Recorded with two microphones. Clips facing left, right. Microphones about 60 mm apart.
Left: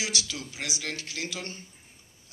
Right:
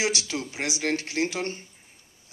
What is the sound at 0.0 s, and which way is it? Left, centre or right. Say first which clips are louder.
A man's voice: right 6 dB; right.